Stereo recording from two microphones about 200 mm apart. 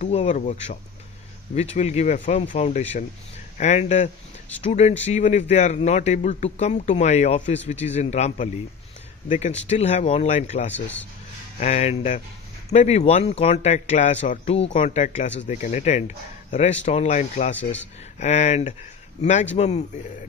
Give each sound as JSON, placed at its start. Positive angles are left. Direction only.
{"t": 0.0, "sound": "speech", "side_deg": 35}
{"t": 9.7, "sound": "speech", "side_deg": 35}